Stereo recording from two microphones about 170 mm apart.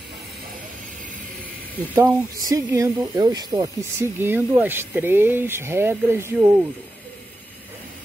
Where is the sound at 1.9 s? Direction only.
15° right (ahead or behind).